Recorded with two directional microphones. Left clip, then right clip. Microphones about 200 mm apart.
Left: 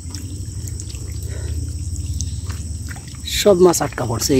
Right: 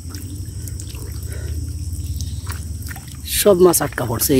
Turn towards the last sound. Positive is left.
turn(degrees=-15)  # may be behind; listen again after turning